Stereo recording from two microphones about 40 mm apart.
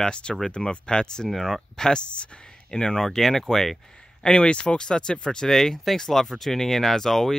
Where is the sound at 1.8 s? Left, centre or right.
Centre.